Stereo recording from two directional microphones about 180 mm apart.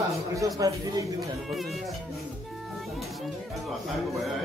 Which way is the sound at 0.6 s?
20° right (ahead or behind).